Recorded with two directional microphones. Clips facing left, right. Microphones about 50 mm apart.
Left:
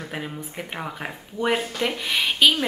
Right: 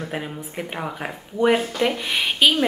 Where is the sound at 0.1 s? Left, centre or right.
Centre.